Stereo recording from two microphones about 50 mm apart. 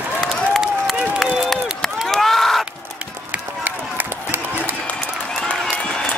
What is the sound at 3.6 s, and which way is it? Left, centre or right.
Run, right.